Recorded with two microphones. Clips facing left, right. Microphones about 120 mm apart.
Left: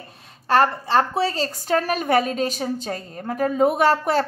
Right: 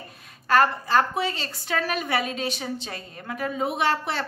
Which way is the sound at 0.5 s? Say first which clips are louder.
Left 2 dB; 30° left (ahead or behind).